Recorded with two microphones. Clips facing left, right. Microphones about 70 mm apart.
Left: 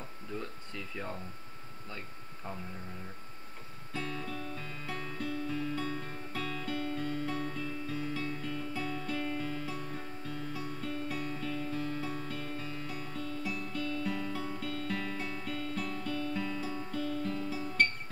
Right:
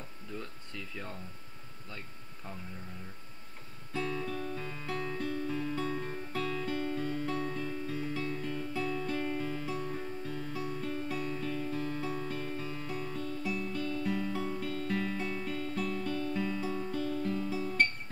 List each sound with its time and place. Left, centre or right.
0.4 s speech: centre
3.9 s music: centre